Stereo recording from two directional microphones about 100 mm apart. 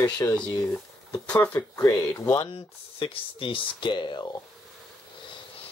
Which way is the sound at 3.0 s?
65° left (ahead or behind).